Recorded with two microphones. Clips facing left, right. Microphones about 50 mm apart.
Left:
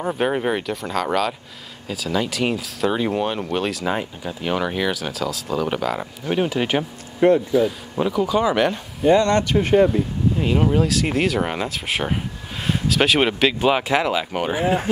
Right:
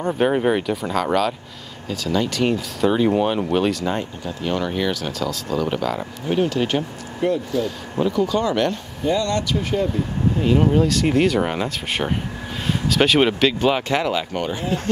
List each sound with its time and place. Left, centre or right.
0.0 s speech: centre
7.2 s speech: left
7.5 s speech: centre
9.1 s speech: left
10.4 s speech: centre